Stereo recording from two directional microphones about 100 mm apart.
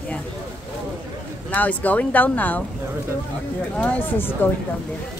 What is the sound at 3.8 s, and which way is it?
Speech, 15° left (ahead or behind).